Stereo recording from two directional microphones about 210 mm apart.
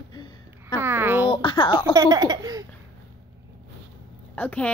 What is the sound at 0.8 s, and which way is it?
Speech, 10° right (ahead or behind).